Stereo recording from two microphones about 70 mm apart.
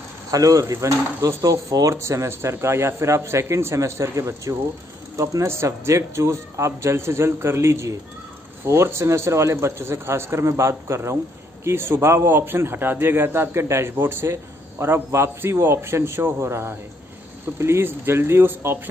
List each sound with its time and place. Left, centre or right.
0.3 s a man's voice: right